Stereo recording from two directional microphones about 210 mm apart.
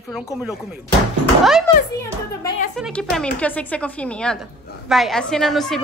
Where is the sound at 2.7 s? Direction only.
Centre (ahead or behind).